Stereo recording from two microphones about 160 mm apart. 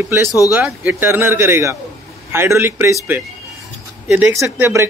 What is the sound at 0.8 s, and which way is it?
Speech, 15° right (ahead or behind).